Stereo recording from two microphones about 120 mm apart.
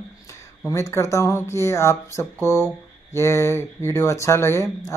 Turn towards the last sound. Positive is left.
turn(degrees=20)  # may be behind; listen again after turning